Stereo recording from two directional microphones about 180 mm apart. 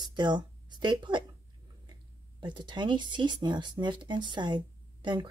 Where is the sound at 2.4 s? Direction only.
25° right (ahead or behind).